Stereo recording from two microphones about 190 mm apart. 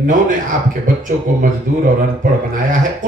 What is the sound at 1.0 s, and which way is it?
Speech, 45° right (ahead or behind).